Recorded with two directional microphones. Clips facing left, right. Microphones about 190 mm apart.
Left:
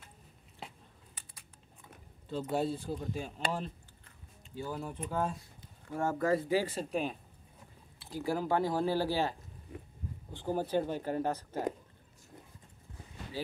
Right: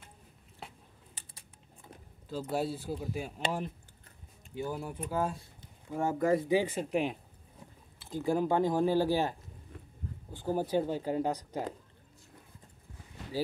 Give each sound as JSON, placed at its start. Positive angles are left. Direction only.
{"t": 2.2, "sound": "speech", "side_deg": -5}
{"t": 5.9, "sound": "speech", "side_deg": -15}
{"t": 8.3, "sound": "speech", "side_deg": -20}